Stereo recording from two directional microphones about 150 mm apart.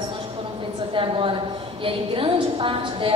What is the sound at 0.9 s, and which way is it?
A woman's voice, 35° right (ahead or behind).